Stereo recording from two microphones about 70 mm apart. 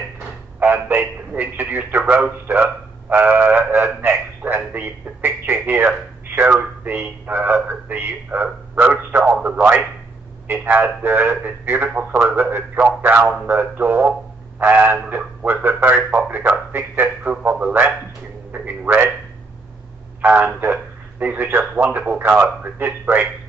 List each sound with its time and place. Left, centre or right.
0.6 s a man's voice: right
20.2 s a man's voice: right